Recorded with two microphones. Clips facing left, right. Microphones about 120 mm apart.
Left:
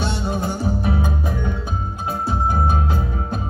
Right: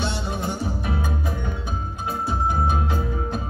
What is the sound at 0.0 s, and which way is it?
Music, 25° left (ahead or behind).